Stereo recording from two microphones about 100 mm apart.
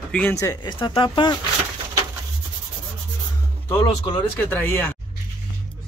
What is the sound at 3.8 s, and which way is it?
Speech, 50° left (ahead or behind).